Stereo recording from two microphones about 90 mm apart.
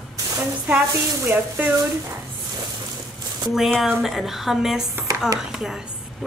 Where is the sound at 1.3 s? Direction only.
20° right (ahead or behind).